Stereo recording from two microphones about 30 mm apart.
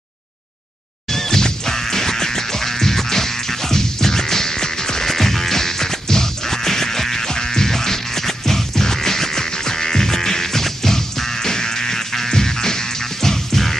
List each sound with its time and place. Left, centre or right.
1.1 s music: centre
5.1 s music: centre